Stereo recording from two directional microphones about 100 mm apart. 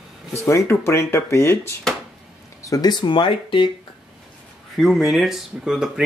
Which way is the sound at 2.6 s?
40° left (ahead or behind).